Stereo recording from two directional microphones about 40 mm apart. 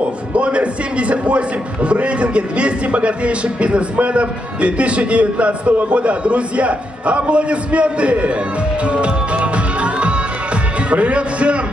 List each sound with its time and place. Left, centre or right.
0.3 s a man's voice: right
8.8 s music: right
10.9 s a man's voice: right